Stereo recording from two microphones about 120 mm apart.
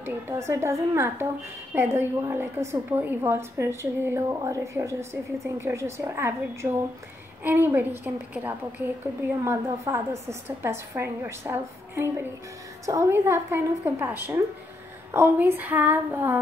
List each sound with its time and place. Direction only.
0.0 s a woman's voice: 25° right (ahead or behind)